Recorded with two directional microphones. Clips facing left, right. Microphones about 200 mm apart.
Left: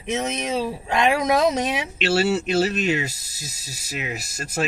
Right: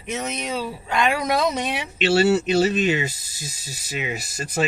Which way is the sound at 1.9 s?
Centre (ahead or behind).